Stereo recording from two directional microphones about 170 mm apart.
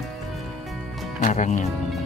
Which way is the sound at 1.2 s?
45° left (ahead or behind).